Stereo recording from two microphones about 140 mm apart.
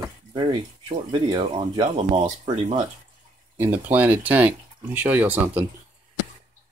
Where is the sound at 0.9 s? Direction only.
40° right (ahead or behind).